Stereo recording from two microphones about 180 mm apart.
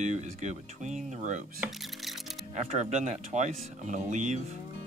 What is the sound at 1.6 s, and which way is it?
Music, centre (ahead or behind).